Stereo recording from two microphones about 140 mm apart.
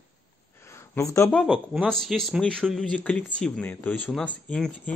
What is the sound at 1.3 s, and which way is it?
Speech, 5° right (ahead or behind).